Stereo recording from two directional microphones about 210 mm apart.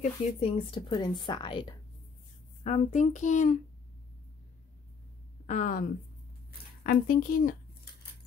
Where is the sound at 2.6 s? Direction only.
35° left (ahead or behind).